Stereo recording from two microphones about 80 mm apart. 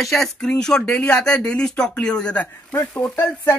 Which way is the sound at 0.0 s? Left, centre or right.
Centre.